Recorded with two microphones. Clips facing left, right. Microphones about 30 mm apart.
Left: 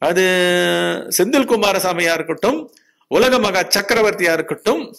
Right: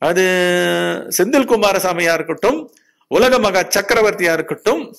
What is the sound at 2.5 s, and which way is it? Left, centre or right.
Speech, left.